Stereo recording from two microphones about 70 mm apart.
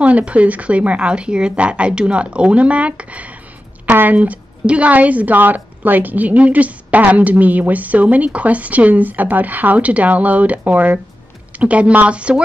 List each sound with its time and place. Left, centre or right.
0.0 s a woman's voice: centre